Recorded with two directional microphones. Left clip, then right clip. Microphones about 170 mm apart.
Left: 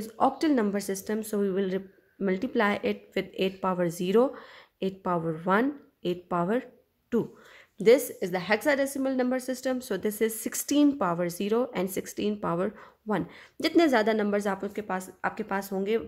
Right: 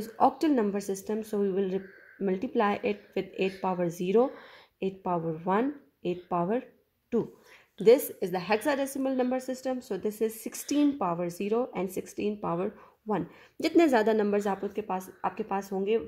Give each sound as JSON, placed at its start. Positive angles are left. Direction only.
{"t": 0.0, "sound": "a woman's voice", "side_deg": -10}
{"t": 7.8, "sound": "a woman's voice", "side_deg": 0}
{"t": 13.6, "sound": "a woman's voice", "side_deg": -10}